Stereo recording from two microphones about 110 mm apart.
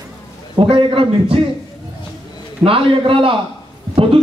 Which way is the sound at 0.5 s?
50° right (ahead or behind).